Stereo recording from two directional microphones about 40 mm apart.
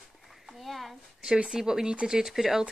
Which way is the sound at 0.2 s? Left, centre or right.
Centre.